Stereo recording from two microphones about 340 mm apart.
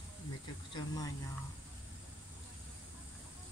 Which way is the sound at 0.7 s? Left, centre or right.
Centre.